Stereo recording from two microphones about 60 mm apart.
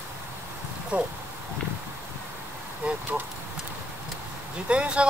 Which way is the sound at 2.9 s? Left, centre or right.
Right.